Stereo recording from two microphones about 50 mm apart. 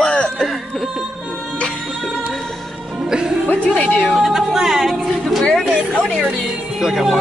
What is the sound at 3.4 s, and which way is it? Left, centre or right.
Music, left.